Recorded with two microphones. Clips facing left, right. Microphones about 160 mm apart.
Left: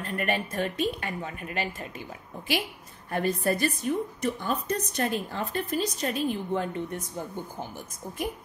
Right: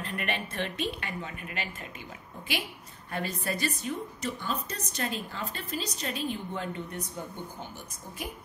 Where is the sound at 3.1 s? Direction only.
45° left (ahead or behind).